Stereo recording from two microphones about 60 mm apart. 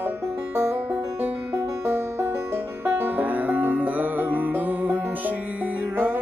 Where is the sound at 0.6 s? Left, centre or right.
Right.